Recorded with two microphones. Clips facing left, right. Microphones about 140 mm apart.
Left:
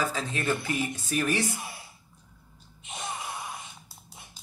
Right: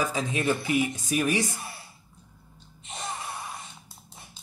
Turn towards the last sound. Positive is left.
turn(degrees=0)  # may be behind; listen again after turning